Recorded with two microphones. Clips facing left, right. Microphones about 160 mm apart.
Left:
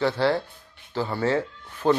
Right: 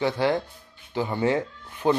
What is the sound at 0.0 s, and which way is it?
Speech, 15° right (ahead or behind).